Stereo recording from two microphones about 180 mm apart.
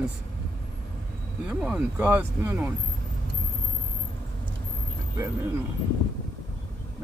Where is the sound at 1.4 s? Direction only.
5° right (ahead or behind).